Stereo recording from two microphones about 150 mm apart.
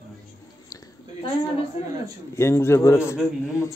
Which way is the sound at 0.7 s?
20° left (ahead or behind).